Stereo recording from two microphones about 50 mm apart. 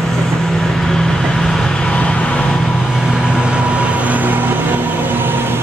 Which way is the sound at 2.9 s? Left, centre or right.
Centre.